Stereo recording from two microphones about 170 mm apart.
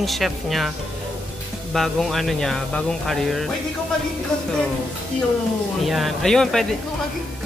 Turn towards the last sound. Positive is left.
turn(degrees=5)  # may be behind; listen again after turning